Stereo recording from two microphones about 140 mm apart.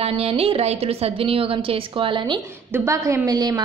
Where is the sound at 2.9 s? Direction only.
20° right (ahead or behind).